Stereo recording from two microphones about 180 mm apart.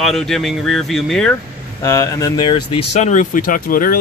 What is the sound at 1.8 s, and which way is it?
Speech, 15° left (ahead or behind).